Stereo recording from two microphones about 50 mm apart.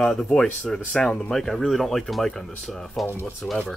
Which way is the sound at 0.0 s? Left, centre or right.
Centre.